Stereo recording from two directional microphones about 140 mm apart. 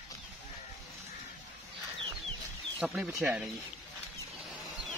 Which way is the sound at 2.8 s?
5° right (ahead or behind).